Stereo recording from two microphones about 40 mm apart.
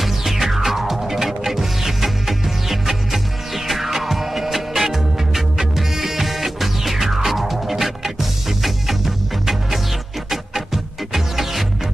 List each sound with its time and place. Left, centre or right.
0.0 s music: centre